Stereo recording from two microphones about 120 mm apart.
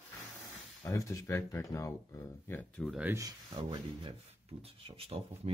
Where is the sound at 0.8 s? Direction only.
25° left (ahead or behind).